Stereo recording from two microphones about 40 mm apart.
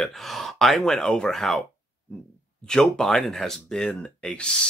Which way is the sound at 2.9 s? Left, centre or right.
Centre.